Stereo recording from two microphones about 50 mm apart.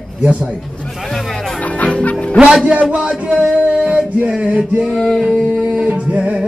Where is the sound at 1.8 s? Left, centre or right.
Left.